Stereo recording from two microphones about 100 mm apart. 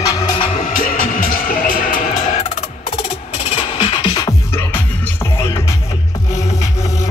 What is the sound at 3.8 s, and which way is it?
Music, 55° left (ahead or behind).